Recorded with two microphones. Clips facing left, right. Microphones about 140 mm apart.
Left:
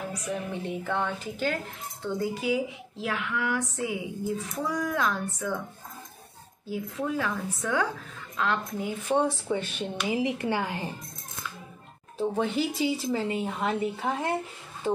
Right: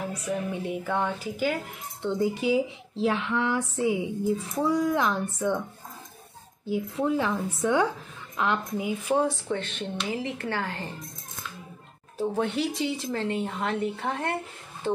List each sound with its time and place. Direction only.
0.3 s a woman's voice: 10° right (ahead or behind)
2.0 s speech: 20° right (ahead or behind)
6.7 s a woman's voice: 25° right (ahead or behind)
9.2 s a woman's voice: 10° left (ahead or behind)
12.2 s a woman's voice: centre (ahead or behind)